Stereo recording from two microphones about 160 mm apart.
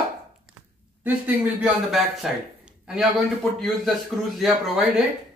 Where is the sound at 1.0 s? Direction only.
10° right (ahead or behind).